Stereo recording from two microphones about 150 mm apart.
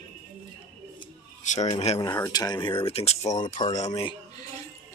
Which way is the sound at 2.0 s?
20° left (ahead or behind).